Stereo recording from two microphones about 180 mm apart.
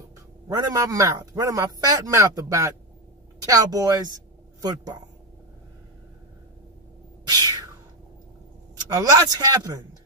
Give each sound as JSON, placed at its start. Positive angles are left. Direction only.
{"t": 0.5, "sound": "speech", "side_deg": -20}
{"t": 7.2, "sound": "a sound", "side_deg": -20}
{"t": 8.8, "sound": "speech", "side_deg": -20}